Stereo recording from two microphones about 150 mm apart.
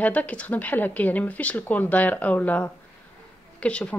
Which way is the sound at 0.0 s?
10° left (ahead or behind).